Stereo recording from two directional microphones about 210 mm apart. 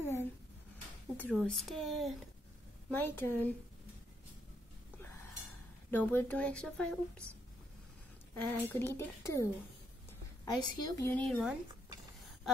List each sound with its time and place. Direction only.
0.0 s a sound: 10° left (ahead or behind)
1.3 s a woman's voice: centre (ahead or behind)
5.9 s a woman's voice: 10° left (ahead or behind)
8.4 s a woman's voice: 10° left (ahead or behind)
11.1 s a woman's voice: 5° left (ahead or behind)